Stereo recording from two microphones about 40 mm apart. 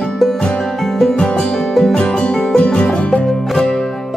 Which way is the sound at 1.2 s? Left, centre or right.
Left.